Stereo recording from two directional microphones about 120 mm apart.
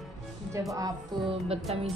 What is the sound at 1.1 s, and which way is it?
Speech, 40° right (ahead or behind).